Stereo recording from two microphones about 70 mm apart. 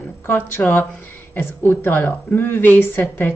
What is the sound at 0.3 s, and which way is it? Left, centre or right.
A woman's voice, left.